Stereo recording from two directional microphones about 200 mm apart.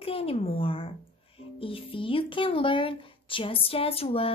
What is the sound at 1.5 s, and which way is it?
Speech, 25° left (ahead or behind).